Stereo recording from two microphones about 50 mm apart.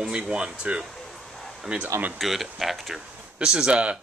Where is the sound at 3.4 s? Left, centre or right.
Centre.